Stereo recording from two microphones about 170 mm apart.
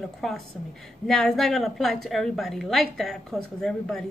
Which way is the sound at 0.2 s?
Centre (ahead or behind).